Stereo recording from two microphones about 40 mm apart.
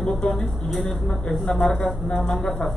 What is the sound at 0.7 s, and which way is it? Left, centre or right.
A man's voice, centre.